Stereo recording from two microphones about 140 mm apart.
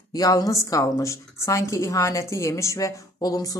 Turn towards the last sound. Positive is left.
turn(degrees=25)  # may be behind; listen again after turning